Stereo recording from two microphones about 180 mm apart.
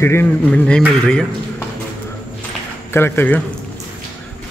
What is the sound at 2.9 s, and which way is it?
Speech, 10° left (ahead or behind).